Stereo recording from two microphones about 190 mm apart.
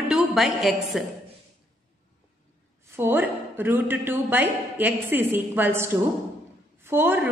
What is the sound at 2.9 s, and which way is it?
A man's voice, 10° right (ahead or behind).